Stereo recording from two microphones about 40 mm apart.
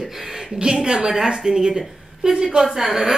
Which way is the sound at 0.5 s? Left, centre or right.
Centre.